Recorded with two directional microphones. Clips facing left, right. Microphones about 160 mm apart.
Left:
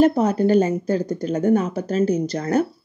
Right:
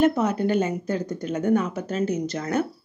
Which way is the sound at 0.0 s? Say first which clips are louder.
Left 4 dB; 35° left (ahead or behind).